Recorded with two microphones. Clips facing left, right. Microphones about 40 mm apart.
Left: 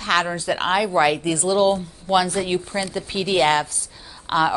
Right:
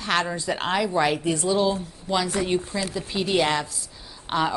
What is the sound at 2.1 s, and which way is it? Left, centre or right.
Speech, left.